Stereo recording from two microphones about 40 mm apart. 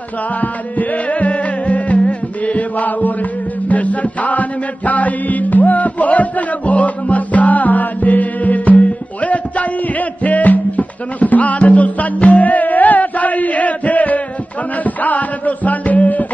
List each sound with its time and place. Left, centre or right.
0.4 s music: left
3.6 s chant: left
14.8 s music: left